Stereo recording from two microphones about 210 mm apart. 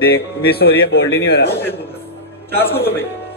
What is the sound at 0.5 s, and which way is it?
Speech, 50° left (ahead or behind).